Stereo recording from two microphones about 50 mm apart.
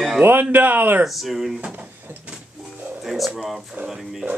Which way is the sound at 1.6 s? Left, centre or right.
Right.